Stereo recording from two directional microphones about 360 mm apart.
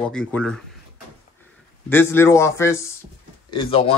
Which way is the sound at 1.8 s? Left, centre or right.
Centre.